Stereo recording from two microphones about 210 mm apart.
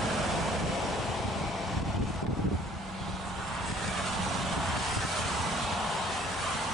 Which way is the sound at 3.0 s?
Centre (ahead or behind).